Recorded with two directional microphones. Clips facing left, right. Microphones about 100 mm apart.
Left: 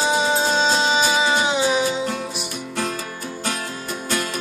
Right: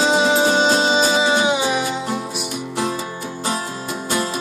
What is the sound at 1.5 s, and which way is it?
Music, 10° right (ahead or behind).